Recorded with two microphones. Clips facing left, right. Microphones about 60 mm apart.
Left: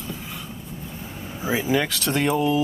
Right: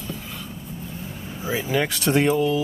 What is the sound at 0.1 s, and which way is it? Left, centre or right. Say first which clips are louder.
Vehicle: right 1 dB; centre.